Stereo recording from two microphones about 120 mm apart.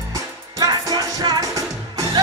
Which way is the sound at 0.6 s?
30° right (ahead or behind).